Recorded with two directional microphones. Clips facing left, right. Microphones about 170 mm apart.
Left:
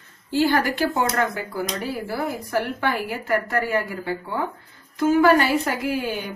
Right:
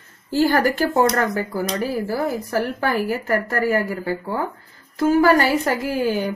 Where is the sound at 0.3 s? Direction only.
40° right (ahead or behind).